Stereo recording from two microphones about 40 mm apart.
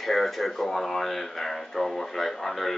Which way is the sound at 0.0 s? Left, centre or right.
Centre.